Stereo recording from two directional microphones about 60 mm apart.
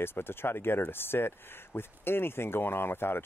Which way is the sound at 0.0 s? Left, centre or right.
Left.